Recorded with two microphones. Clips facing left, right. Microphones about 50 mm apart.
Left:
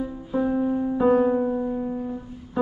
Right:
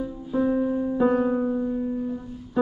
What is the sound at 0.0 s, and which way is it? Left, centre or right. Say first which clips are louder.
Music: even; centre.